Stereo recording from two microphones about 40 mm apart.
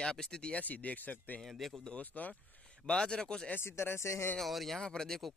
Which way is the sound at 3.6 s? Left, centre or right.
Left.